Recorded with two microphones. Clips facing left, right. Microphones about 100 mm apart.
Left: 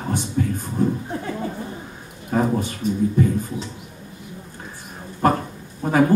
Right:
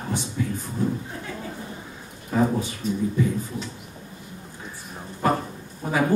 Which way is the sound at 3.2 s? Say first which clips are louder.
Left 5 dB; 50° left (ahead or behind).